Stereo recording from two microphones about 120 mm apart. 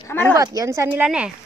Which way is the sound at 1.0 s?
10° right (ahead or behind).